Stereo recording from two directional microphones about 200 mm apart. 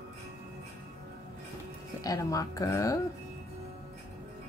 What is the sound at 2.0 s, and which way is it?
Speech, 15° left (ahead or behind).